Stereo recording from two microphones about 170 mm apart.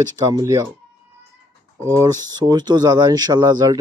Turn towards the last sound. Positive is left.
turn(degrees=-20)  # may be behind; listen again after turning